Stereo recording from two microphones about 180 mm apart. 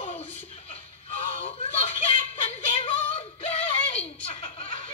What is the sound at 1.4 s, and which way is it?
Female singing, 35° left (ahead or behind).